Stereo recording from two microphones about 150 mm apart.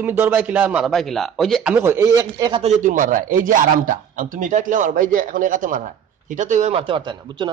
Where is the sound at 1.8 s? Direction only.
20° right (ahead or behind).